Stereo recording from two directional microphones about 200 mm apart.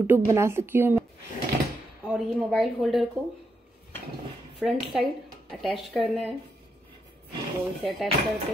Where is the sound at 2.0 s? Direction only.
Centre (ahead or behind).